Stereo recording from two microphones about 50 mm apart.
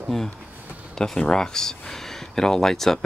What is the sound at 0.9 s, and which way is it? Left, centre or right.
Speech, centre.